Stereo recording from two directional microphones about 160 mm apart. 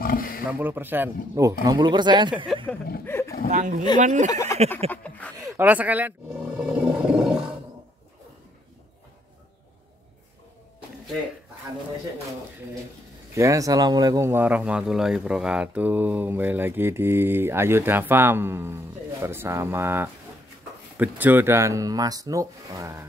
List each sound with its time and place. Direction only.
0.0 s a sound: 65° left (ahead or behind)
0.5 s speech: 10° right (ahead or behind); by 2.4 s 30° right (ahead or behind)
3.1 s a sound: 15° left (ahead or behind)
3.5 s speech: 50° right (ahead or behind)
4.3 s speech: 20° left (ahead or behind)
4.9 s a sound: 10° left (ahead or behind)
5.4 s speech: 10° right (ahead or behind)
6.6 s roar: 5° right (ahead or behind)
13.3 s speech: 20° right (ahead or behind)